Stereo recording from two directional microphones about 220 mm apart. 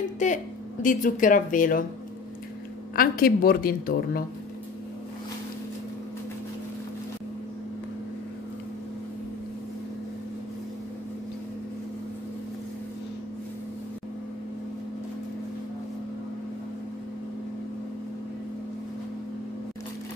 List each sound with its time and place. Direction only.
0.2 s a woman's voice: 35° left (ahead or behind)
3.0 s a woman's voice: 40° left (ahead or behind)